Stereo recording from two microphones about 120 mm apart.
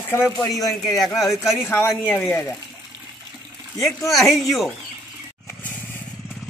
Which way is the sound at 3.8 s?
Centre (ahead or behind).